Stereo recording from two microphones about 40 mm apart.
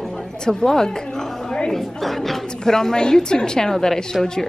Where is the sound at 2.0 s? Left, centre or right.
Centre.